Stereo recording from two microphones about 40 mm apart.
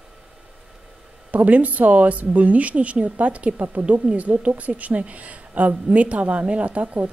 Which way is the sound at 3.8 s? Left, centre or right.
Right.